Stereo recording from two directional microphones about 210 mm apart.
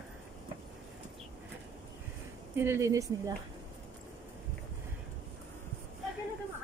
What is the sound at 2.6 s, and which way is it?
Speech, 15° right (ahead or behind).